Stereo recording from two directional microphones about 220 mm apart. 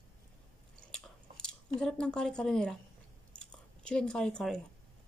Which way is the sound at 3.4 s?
5° left (ahead or behind).